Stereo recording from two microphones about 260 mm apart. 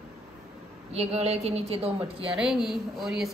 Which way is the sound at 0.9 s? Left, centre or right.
Right.